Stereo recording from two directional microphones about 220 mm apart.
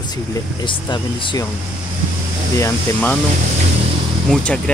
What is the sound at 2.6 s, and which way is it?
Speech, 10° left (ahead or behind).